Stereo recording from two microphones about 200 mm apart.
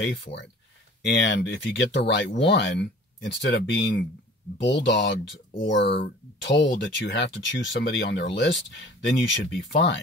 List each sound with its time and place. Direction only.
0.0 s speech: 60° left (ahead or behind)